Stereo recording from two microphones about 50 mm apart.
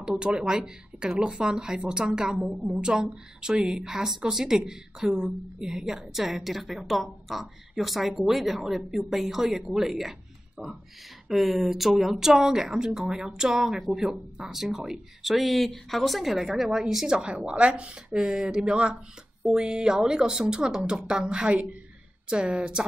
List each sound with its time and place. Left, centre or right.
0.2 s speech: centre
10.6 s speech: right
11.2 s speech: centre
17.2 s speech: right
18.7 s speech: right